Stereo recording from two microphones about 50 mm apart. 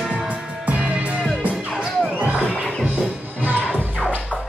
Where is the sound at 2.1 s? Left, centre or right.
Right.